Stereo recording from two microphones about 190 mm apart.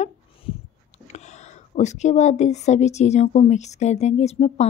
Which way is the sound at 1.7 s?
35° left (ahead or behind).